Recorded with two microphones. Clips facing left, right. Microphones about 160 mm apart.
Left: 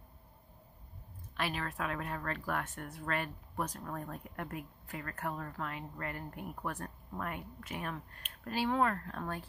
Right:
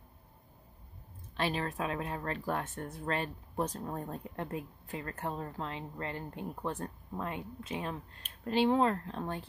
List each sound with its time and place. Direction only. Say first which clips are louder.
1.3 s speech: right 4 dB; 25° right (ahead or behind)